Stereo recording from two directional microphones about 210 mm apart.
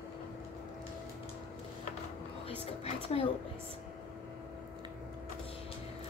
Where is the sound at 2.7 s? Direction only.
30° left (ahead or behind).